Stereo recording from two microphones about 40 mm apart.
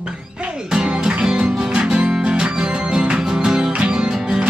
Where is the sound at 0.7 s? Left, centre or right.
Centre.